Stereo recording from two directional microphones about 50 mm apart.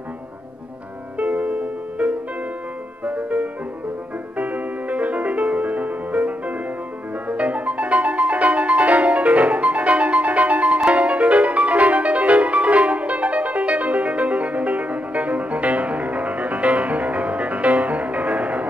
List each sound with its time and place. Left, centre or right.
1.1 s music: right